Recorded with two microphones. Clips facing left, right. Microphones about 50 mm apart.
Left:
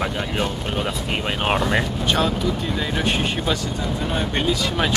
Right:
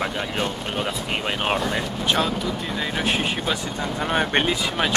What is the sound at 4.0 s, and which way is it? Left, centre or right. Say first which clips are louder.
Speech: right 4 dB; right.